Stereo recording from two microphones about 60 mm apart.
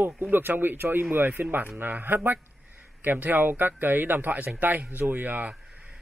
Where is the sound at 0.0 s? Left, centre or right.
Right.